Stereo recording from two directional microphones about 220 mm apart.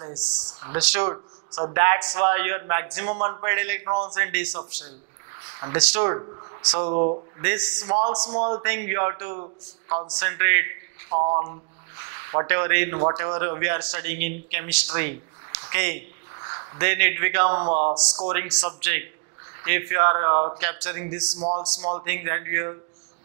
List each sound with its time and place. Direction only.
0.0 s speech: 20° right (ahead or behind)
5.8 s speech: 10° right (ahead or behind)
6.0 s speech: 20° right (ahead or behind)
7.4 s speech: 10° right (ahead or behind)
7.8 s speech: 25° right (ahead or behind)
10.2 s a man's voice: 15° right (ahead or behind)
11.1 s a man's voice: 25° right (ahead or behind)
17.6 s speech: 40° right (ahead or behind)
17.9 s speech: 25° right (ahead or behind)
21.4 s speech: 30° right (ahead or behind)
22.0 s speech: 15° right (ahead or behind)